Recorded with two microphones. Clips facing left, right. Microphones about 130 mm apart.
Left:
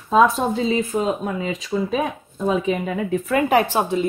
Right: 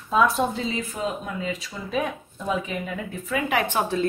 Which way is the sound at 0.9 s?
75° left (ahead or behind).